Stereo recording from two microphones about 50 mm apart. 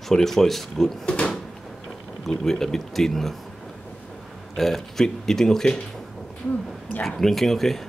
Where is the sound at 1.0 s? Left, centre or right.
Centre.